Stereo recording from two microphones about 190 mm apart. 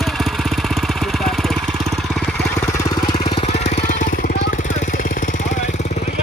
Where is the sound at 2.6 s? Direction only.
15° left (ahead or behind); by 6.1 s 35° left (ahead or behind).